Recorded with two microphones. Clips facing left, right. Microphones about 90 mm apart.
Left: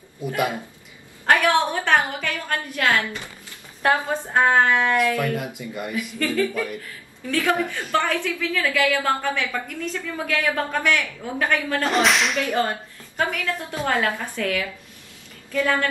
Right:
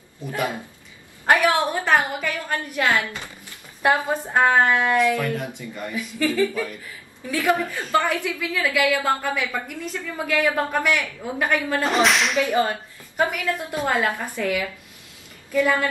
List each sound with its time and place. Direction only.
0.2 s speech: 10° left (ahead or behind)
1.2 s a woman's voice: 10° right (ahead or behind)
5.4 s speech: 10° left (ahead or behind)
6.1 s a woman's voice: 15° right (ahead or behind); by 12.6 s centre (ahead or behind)
13.2 s a woman's voice: 10° right (ahead or behind)